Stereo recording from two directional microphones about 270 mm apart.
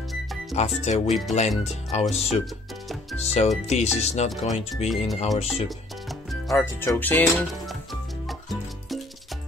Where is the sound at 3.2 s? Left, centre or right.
Left.